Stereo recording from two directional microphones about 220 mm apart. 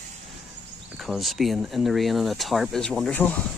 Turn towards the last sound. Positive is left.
turn(degrees=5)  # may be behind; listen again after turning